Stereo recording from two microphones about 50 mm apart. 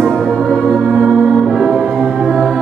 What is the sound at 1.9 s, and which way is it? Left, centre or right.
Music, centre.